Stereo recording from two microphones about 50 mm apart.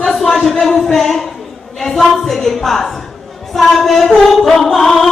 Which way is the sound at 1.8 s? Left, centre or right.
Centre.